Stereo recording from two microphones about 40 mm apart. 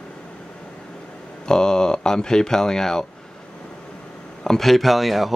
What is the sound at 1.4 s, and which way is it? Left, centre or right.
Speech, centre.